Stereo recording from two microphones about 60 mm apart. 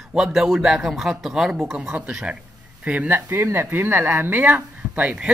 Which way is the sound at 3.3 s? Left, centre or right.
Right.